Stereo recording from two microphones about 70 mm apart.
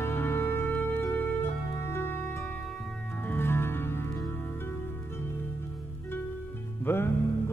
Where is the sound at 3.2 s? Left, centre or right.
Left.